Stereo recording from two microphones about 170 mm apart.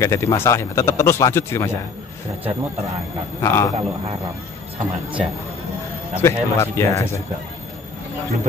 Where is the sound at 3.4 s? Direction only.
20° left (ahead or behind).